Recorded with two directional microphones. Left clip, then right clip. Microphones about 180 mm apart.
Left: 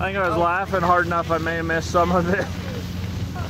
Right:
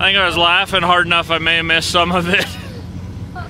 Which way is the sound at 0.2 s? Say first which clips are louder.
Right 7 dB; 35° right (ahead or behind).